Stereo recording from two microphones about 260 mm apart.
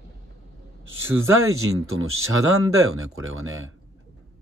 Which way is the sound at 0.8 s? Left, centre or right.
Right.